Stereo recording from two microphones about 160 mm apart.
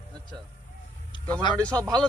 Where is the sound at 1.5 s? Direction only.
5° left (ahead or behind).